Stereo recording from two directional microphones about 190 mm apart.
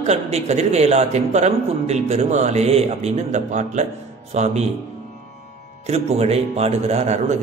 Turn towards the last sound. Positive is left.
turn(degrees=-35)  # may be behind; listen again after turning